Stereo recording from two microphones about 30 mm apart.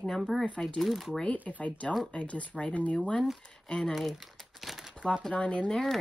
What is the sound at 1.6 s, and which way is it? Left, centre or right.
Speech, left.